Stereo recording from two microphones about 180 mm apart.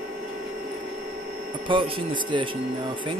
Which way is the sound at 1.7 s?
30° right (ahead or behind).